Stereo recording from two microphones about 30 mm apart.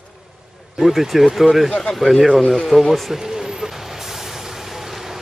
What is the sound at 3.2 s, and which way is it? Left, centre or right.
Vehicle, centre.